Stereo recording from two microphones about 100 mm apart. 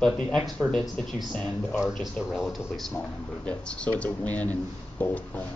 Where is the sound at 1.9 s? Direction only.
Centre (ahead or behind).